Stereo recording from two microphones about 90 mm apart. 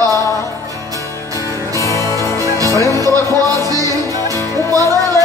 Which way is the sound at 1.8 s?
35° left (ahead or behind).